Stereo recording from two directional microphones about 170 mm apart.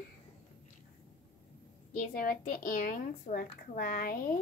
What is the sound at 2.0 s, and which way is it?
A woman's voice, 55° left (ahead or behind).